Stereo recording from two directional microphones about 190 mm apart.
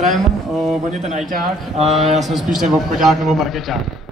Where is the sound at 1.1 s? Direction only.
35° right (ahead or behind).